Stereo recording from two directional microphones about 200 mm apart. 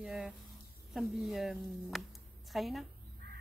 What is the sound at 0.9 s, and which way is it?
A woman's voice, centre (ahead or behind).